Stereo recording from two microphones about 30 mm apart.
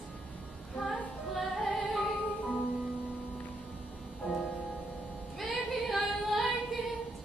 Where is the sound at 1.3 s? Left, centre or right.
Centre.